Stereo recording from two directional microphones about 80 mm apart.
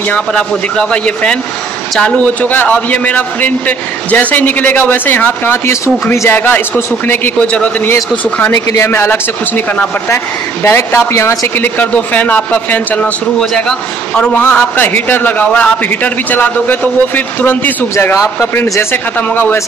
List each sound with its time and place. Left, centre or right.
0.1 s a man's voice: centre; by 6.3 s left
6.3 s a man's voice: left
13.4 s a man's voice: centre
14.3 s a man's voice: left